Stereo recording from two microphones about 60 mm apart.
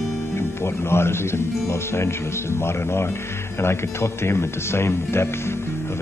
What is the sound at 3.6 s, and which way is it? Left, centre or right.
Speech, left.